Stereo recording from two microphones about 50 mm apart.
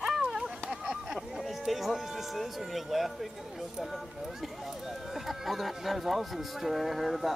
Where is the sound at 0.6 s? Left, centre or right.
Centre.